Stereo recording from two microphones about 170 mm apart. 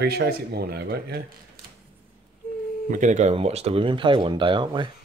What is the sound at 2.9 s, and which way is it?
Speech, 45° right (ahead or behind).